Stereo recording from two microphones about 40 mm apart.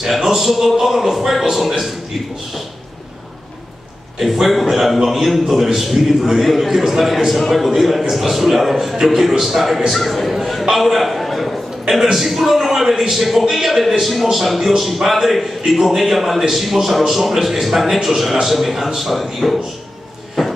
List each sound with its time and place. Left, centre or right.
0.0 s a man's voice: centre
4.2 s a man's voice: centre